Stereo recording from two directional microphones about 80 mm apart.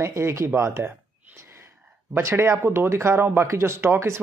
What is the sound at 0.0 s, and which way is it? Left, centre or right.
Speech, right.